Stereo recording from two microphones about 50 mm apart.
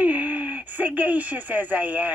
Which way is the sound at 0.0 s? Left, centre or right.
Right.